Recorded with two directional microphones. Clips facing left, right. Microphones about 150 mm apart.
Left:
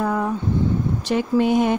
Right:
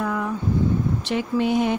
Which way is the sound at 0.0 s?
35° left (ahead or behind).